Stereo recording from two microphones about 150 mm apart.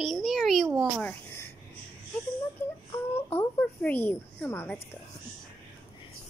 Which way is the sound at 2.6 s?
15° left (ahead or behind).